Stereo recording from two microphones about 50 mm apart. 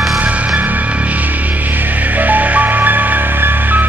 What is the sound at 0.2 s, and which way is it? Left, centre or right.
Music, right.